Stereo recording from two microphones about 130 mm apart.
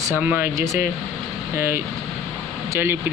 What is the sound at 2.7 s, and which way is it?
Speech, 20° right (ahead or behind).